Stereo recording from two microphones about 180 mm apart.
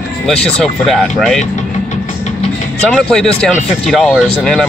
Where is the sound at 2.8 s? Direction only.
5° left (ahead or behind).